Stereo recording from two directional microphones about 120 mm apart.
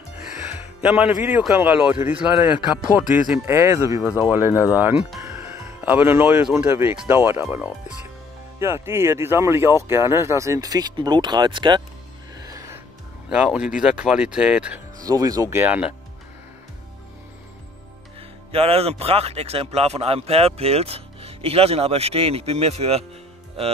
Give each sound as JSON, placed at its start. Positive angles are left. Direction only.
{"t": 0.5, "sound": "music", "side_deg": -15}
{"t": 1.6, "sound": "speech", "side_deg": -15}
{"t": 3.4, "sound": "speech", "side_deg": -25}
{"t": 8.5, "sound": "speech", "side_deg": -20}
{"t": 12.4, "sound": "music", "side_deg": -25}
{"t": 13.3, "sound": "speech", "side_deg": -10}
{"t": 15.0, "sound": "speech", "side_deg": -30}
{"t": 15.6, "sound": "speech", "side_deg": -10}
{"t": 18.5, "sound": "speech", "side_deg": -55}